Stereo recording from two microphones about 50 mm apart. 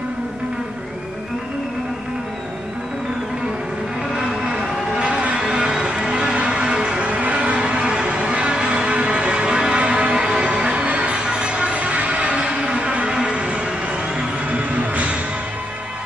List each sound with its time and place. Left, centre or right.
4.1 s vehicle: centre
5.4 s music: centre
7.1 s a sound: right
11.2 s music: centre